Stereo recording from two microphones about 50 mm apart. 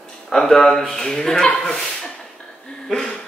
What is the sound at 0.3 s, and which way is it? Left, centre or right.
Speech, centre.